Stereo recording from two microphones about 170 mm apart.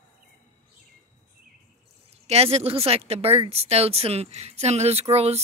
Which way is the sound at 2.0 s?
35° right (ahead or behind).